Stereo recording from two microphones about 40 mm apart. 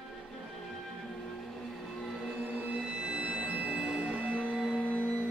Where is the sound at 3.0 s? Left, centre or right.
Right.